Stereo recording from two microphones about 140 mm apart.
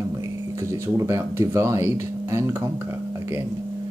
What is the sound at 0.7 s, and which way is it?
Speech, 20° right (ahead or behind).